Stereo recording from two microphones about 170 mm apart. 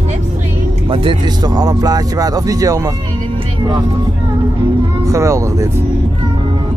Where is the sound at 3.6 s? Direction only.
25° right (ahead or behind).